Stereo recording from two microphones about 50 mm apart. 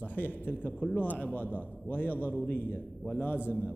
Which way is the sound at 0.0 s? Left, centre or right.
Left.